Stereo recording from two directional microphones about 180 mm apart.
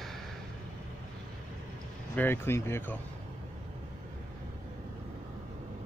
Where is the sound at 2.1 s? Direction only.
10° left (ahead or behind).